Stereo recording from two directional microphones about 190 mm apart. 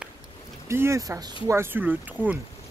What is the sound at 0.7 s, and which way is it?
Speech, 15° right (ahead or behind).